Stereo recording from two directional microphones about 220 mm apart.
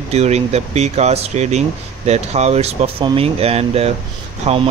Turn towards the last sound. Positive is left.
turn(degrees=-30)  # may be behind; listen again after turning